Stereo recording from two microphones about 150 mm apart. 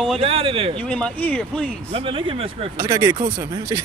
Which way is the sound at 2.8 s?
25° right (ahead or behind).